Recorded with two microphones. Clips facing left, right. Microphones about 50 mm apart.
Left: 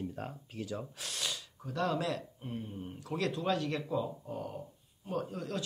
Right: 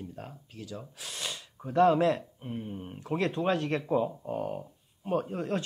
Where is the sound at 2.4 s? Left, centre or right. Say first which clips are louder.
Right 3 dB; centre.